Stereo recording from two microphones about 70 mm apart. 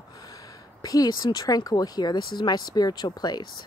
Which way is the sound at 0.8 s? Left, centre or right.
Left.